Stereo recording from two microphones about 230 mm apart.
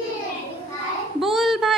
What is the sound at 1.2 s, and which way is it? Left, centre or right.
Speech, centre.